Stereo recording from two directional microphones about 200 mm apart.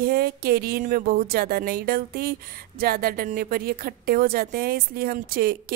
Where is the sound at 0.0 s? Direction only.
50° right (ahead or behind).